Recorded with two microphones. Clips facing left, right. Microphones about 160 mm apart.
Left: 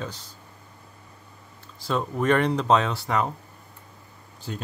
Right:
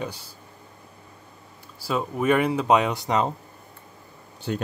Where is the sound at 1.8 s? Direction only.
5° right (ahead or behind).